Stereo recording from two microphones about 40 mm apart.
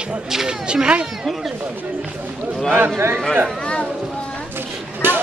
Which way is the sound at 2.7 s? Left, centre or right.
Right.